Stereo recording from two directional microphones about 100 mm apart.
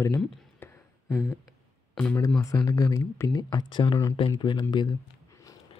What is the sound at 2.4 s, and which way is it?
Speech, 35° left (ahead or behind).